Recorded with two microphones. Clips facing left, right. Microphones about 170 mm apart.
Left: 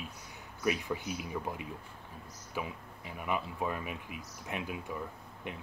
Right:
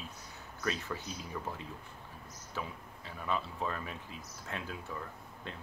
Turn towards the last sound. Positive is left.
turn(degrees=15)  # may be behind; listen again after turning